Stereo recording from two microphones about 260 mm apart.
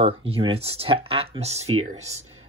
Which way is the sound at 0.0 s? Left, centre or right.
Right.